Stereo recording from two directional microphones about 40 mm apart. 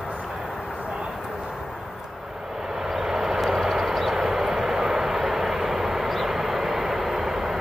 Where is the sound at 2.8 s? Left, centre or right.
Centre.